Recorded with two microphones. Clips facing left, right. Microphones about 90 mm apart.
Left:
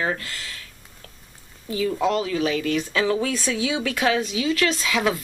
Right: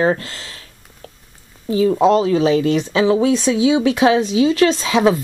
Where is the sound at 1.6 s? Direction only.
30° right (ahead or behind).